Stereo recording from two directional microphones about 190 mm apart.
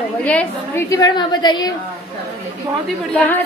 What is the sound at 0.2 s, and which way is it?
A woman's voice, 5° left (ahead or behind).